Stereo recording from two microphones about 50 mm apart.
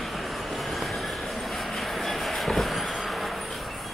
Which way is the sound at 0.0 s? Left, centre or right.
Centre.